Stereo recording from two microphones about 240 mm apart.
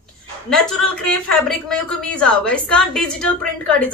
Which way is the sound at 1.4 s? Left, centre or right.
Centre.